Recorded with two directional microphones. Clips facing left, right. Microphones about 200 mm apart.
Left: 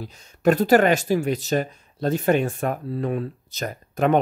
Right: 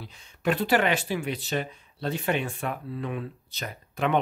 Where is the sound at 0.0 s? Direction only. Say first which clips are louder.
Left 8 dB; 45° left (ahead or behind).